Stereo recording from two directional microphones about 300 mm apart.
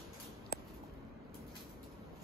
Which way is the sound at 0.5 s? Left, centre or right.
Left.